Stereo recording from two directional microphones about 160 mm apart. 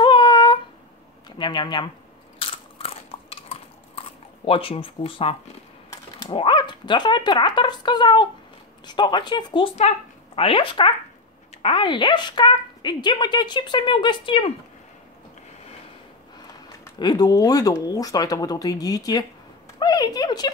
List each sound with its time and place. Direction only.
0.0 s a sound: 30° left (ahead or behind)
1.4 s a woman's voice: 25° left (ahead or behind)
2.3 s biting: 35° left (ahead or behind)
4.5 s a woman's voice: 35° left (ahead or behind)
17.0 s a woman's voice: 25° left (ahead or behind)